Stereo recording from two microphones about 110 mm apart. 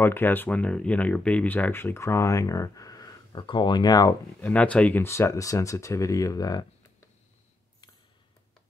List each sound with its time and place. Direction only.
0.0 s speech: 20° left (ahead or behind); by 4.1 s 35° left (ahead or behind)
4.4 s speech: 15° left (ahead or behind)
5.0 s speech: 25° left (ahead or behind)